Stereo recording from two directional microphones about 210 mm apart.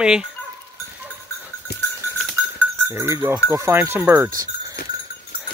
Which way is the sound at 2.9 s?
15° right (ahead or behind).